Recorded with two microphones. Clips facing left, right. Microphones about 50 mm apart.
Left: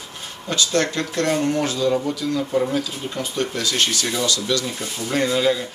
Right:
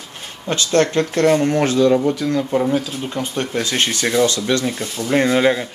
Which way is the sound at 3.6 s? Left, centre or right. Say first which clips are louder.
Right 5 dB; right.